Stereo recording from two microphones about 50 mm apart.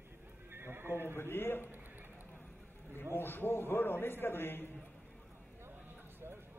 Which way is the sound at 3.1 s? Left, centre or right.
Left.